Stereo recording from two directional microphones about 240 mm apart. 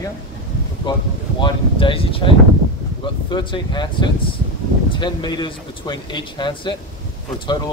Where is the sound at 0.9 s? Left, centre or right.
Centre.